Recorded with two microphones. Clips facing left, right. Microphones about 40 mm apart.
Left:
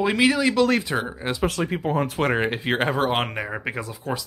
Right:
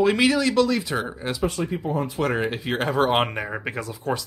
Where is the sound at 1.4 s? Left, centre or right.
Left.